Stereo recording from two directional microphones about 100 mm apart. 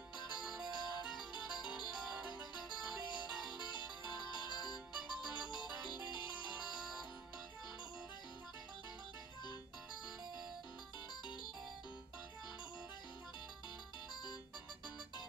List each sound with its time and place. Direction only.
0.4 s music: 5° right (ahead or behind)
3.1 s music: 50° left (ahead or behind)
4.9 s music: 10° right (ahead or behind)